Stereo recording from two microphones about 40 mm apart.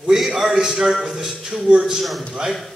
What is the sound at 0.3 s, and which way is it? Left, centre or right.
A man's voice, centre.